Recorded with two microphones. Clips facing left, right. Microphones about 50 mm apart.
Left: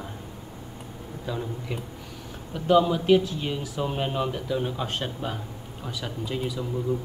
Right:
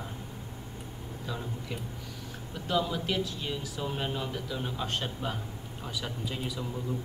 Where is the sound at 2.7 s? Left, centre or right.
Left.